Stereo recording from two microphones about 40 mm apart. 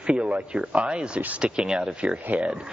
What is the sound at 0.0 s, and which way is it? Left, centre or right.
Speech, right.